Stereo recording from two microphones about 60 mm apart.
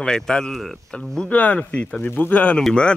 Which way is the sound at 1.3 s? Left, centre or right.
Left.